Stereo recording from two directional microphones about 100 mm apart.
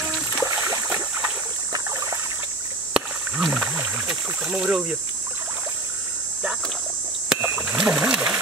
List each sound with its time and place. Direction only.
0.4 s a sound: 25° right (ahead or behind)
0.8 s stream: 15° right (ahead or behind)
1.7 s trickle: 35° right (ahead or behind)
2.9 s rowboat: 5° right (ahead or behind)
4.5 s speech: 10° right (ahead or behind)
7.4 s a sound: 15° right (ahead or behind)